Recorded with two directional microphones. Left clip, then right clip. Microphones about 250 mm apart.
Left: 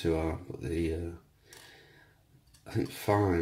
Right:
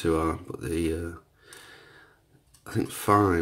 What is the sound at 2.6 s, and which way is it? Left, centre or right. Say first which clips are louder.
Speech: right 5 dB; centre.